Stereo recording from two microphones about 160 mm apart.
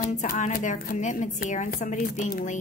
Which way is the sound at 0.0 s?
55° left (ahead or behind).